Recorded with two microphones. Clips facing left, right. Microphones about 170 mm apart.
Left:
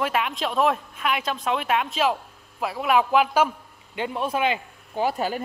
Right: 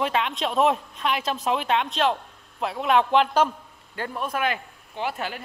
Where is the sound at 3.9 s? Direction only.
20° left (ahead or behind).